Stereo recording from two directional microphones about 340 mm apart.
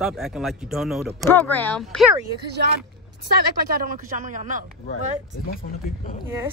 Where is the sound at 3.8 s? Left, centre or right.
Right.